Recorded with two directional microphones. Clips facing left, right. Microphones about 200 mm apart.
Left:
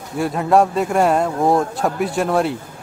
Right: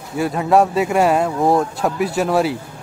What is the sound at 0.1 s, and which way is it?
Speech, centre (ahead or behind).